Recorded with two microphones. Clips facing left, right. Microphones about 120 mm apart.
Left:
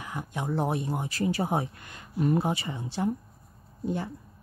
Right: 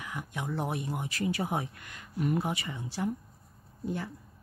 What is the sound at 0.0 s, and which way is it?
A man's voice, 30° left (ahead or behind).